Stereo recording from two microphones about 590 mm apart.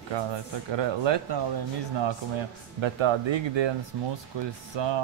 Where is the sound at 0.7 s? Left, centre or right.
Right.